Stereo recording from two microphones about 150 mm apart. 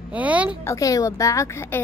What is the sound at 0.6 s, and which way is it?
A woman's voice, 20° left (ahead or behind).